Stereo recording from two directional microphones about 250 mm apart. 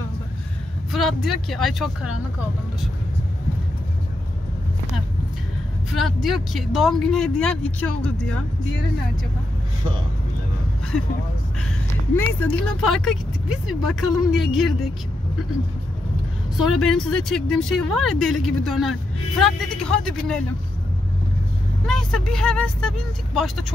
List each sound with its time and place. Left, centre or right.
0.9 s speech: centre
6.0 s speech: centre
12.2 s speech: centre
16.5 s speech: centre
21.8 s speech: centre